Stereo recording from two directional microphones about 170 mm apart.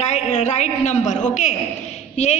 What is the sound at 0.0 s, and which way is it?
A woman's voice, 40° left (ahead or behind).